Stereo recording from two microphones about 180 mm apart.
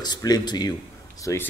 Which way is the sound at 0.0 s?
20° left (ahead or behind).